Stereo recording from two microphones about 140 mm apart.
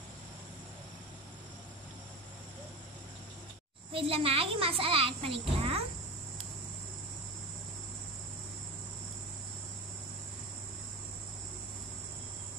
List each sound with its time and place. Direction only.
3.9 s a child's voice: 40° right (ahead or behind)